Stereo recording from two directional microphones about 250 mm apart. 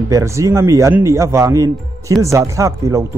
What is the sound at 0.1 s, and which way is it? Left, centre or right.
Speech, centre.